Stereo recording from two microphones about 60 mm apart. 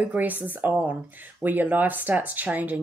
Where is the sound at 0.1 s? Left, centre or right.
Right.